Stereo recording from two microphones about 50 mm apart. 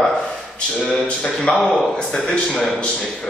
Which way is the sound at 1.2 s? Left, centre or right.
Centre.